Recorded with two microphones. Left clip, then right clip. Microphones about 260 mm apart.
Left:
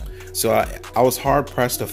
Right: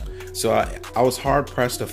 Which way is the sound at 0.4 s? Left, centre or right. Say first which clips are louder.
Left 2 dB; centre.